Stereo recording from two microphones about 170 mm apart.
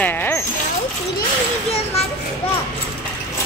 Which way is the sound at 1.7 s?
35° left (ahead or behind).